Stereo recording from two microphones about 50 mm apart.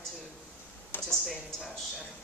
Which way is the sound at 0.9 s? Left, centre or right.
Left.